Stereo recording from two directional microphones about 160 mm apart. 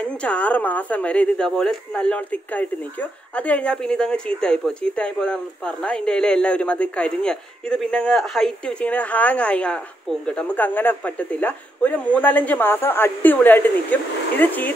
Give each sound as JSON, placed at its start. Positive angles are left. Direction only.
{"t": 0.0, "sound": "speech", "side_deg": 5}